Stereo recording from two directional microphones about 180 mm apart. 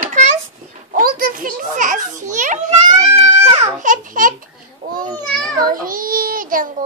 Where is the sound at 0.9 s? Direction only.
50° right (ahead or behind).